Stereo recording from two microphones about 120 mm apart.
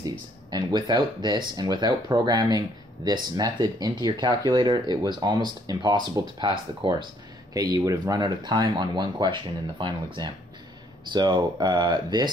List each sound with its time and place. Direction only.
0.5 s speech: 35° right (ahead or behind)
7.5 s speech: 30° right (ahead or behind)